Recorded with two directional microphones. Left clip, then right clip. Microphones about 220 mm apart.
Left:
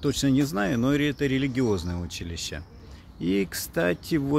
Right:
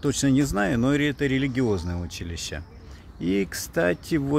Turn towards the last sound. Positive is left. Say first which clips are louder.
# right 1 dB
turn(degrees=-5)  # may be behind; listen again after turning